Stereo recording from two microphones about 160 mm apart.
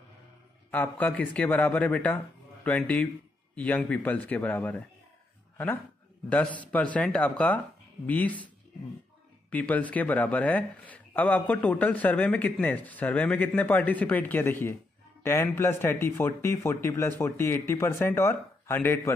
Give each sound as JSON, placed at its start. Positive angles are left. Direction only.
{"t": 0.7, "sound": "speech", "side_deg": 10}
{"t": 6.2, "sound": "speech", "side_deg": 10}
{"t": 9.5, "sound": "speech", "side_deg": 10}